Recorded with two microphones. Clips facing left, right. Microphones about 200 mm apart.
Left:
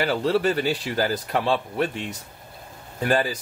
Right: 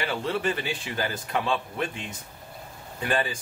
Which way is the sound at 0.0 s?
40° left (ahead or behind).